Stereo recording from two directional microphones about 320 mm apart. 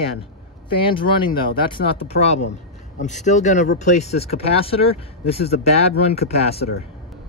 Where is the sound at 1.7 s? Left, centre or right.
Centre.